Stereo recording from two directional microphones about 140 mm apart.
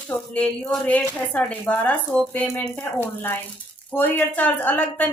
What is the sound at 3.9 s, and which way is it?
Speech, 15° left (ahead or behind).